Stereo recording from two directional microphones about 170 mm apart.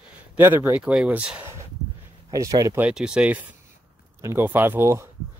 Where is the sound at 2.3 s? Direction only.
20° right (ahead or behind).